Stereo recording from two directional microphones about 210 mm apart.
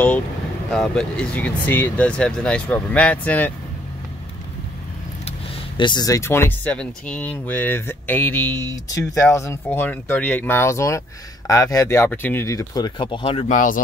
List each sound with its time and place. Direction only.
0.7 s speech: 5° left (ahead or behind)
5.8 s speech: 20° left (ahead or behind); by 13.7 s 35° left (ahead or behind)